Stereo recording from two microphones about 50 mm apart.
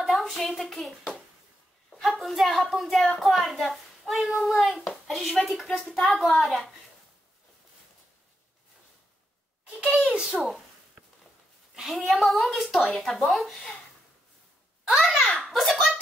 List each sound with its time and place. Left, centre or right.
0.0 s a child's voice: centre
9.8 s a child's voice: right
12.1 s a child's voice: centre
15.0 s a sound: centre